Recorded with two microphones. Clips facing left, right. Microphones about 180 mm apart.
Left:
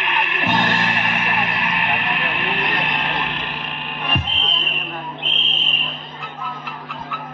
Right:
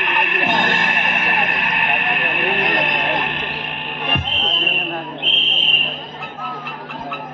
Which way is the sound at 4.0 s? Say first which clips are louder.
Right 2 dB; 50° right (ahead or behind).